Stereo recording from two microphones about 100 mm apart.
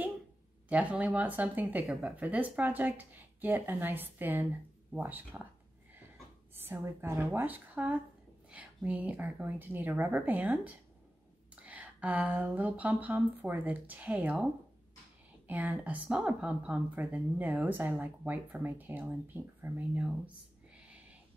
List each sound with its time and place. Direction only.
0.7 s speech: 15° right (ahead or behind)
1.9 s a woman's voice: 5° right (ahead or behind)
6.6 s a woman's voice: 25° right (ahead or behind)
20.7 s a sound: 15° right (ahead or behind)